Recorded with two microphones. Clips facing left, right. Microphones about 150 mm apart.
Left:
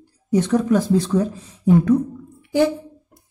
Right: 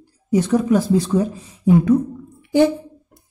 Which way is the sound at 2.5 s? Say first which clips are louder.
Right 3 dB; 25° right (ahead or behind).